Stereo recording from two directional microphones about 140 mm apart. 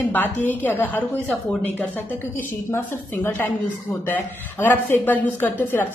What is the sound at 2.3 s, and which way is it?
Speech, 15° left (ahead or behind).